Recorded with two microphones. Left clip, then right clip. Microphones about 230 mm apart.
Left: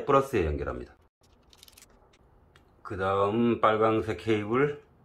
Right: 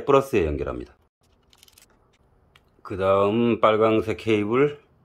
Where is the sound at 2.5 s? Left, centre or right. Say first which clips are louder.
Right 5 dB; right.